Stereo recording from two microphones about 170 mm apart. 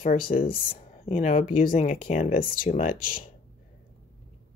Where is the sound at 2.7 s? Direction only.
50° left (ahead or behind).